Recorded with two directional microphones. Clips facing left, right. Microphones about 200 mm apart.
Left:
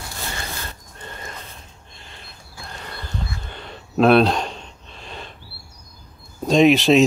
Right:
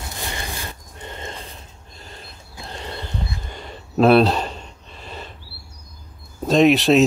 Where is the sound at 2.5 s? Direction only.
25° right (ahead or behind).